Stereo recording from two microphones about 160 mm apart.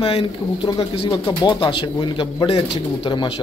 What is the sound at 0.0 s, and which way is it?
Speech, 35° left (ahead or behind).